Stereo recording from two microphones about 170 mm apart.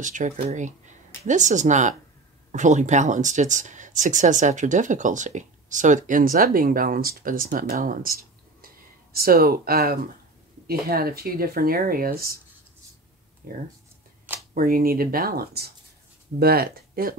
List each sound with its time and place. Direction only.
0.0 s speech: 50° right (ahead or behind)
13.4 s speech: 55° right (ahead or behind)